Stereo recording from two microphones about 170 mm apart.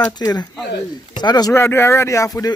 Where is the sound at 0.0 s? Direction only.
20° left (ahead or behind).